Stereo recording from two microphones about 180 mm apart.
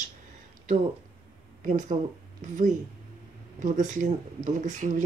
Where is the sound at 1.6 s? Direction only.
40° right (ahead or behind).